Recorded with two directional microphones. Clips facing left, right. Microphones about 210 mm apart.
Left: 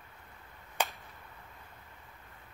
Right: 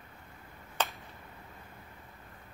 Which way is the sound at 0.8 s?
10° left (ahead or behind).